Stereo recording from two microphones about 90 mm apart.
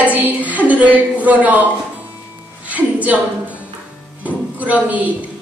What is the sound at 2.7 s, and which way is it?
Music, 15° right (ahead or behind).